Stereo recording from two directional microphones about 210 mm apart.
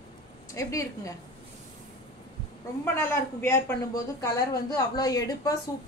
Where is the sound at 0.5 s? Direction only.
15° left (ahead or behind).